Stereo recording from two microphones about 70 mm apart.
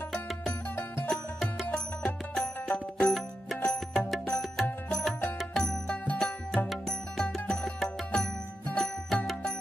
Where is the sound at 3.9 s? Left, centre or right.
Centre.